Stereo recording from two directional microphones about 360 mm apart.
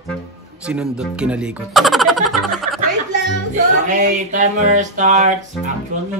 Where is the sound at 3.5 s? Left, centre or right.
Right.